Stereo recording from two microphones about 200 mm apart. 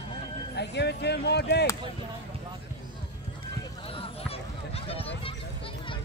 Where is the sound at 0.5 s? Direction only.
55° left (ahead or behind).